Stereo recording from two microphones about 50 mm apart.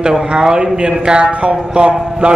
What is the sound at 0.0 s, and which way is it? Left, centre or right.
A man's voice, centre.